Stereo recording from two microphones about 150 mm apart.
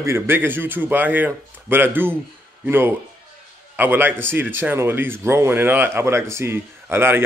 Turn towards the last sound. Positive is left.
turn(degrees=-15)  # may be behind; listen again after turning